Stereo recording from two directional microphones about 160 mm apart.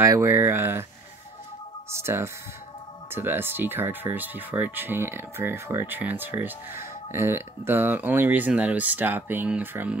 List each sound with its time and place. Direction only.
0.0 s speech: 20° right (ahead or behind)
2.0 s speech: 15° right (ahead or behind)